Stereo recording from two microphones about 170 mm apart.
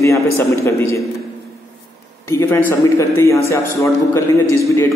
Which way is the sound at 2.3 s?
15° left (ahead or behind).